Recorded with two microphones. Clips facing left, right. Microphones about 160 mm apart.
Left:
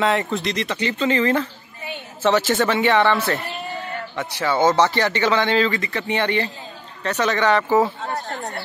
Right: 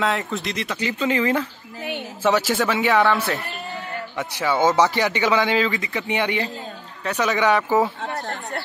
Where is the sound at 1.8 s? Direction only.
70° right (ahead or behind).